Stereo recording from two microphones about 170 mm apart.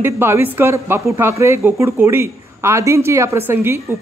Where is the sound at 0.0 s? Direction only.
15° right (ahead or behind).